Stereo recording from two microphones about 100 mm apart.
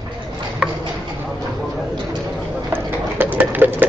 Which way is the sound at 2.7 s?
20° right (ahead or behind).